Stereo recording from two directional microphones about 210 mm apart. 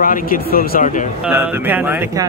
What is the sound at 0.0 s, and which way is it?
Speech, 40° left (ahead or behind).